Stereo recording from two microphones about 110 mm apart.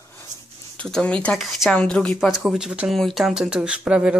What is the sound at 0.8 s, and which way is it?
Speech, 10° left (ahead or behind).